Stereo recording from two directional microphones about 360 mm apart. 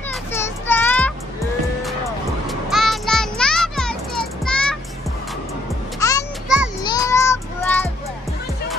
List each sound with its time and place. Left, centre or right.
0.1 s children playing: centre
2.4 s child singing: centre
5.9 s music: centre
6.8 s child singing: centre